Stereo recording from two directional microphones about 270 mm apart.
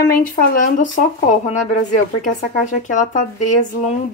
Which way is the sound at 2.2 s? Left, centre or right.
Left.